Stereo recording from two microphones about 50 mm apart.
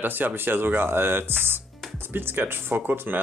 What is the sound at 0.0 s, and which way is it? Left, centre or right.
Speech, right.